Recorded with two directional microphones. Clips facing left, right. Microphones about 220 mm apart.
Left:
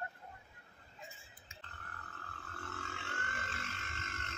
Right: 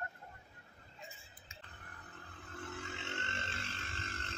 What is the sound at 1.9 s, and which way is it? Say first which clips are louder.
Burping: left 1 dB; 15° right (ahead or behind).